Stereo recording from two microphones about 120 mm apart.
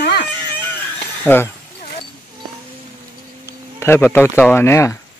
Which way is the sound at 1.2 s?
15° left (ahead or behind).